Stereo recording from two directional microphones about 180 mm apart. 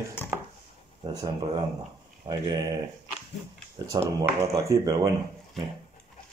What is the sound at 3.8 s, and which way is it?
Speech, 20° right (ahead or behind).